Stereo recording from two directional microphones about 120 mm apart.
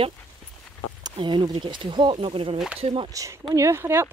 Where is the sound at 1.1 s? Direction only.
40° right (ahead or behind).